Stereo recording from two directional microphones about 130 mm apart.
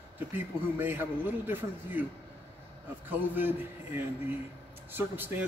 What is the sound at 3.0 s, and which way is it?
A man's voice, 15° right (ahead or behind).